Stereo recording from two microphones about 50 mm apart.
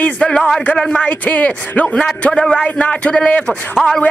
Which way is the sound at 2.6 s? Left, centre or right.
Left.